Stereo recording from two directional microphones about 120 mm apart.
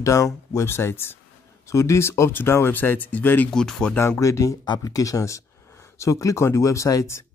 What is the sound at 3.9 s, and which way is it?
Speech, 20° left (ahead or behind).